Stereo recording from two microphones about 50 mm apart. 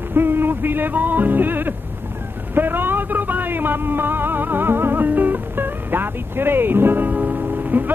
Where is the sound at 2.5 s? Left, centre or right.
Right.